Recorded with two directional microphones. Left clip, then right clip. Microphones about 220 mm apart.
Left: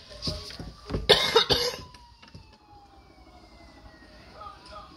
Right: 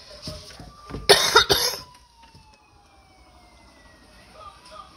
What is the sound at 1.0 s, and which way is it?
Cough, 35° right (ahead or behind).